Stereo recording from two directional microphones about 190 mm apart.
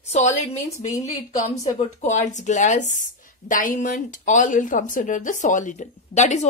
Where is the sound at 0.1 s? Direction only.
35° left (ahead or behind).